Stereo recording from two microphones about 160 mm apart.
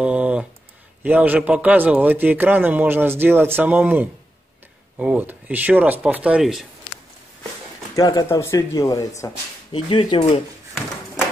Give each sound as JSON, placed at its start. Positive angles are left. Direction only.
{"t": 0.0, "sound": "a sound", "side_deg": -5}
{"t": 1.0, "sound": "a man's voice", "side_deg": -10}
{"t": 7.9, "sound": "speech", "side_deg": 25}
{"t": 9.7, "sound": "speech", "side_deg": 30}